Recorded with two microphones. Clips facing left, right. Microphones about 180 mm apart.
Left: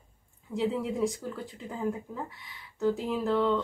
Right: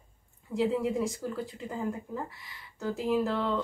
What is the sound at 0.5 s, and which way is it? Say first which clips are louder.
A woman's voice: right 2 dB; centre (ahead or behind).